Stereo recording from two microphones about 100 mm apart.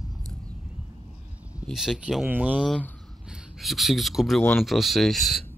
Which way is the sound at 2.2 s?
15° right (ahead or behind).